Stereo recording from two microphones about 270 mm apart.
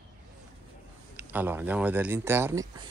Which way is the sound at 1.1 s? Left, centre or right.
Centre.